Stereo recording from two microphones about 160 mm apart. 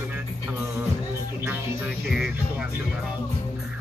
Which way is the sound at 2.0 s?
5° right (ahead or behind).